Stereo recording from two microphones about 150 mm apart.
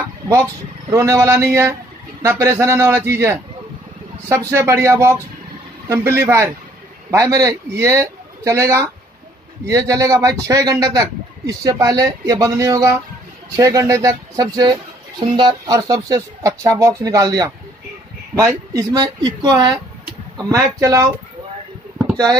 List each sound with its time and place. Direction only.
0.8 s a man's voice: 20° right (ahead or behind)
22.1 s speech: 25° right (ahead or behind)